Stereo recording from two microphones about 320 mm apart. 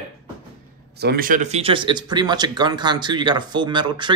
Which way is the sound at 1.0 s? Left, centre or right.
Right.